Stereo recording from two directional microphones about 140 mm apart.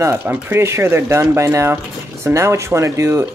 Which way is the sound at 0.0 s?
15° right (ahead or behind).